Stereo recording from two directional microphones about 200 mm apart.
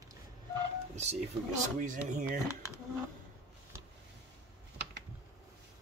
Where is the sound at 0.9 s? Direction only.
35° right (ahead or behind).